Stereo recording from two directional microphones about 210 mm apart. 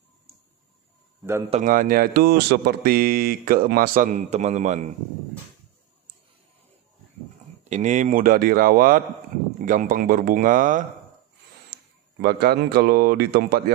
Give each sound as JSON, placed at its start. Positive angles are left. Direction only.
{"t": 1.5, "sound": "speech", "side_deg": -40}
{"t": 7.7, "sound": "speech", "side_deg": -35}
{"t": 12.2, "sound": "speech", "side_deg": -50}